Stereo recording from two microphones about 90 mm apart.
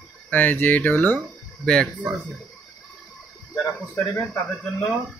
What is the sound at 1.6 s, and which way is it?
Speech, 10° left (ahead or behind).